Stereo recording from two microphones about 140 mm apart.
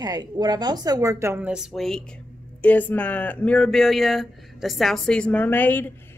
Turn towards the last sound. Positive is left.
turn(degrees=15)  # may be behind; listen again after turning